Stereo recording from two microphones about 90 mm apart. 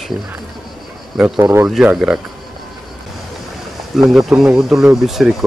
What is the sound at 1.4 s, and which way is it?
Speech, 25° right (ahead or behind).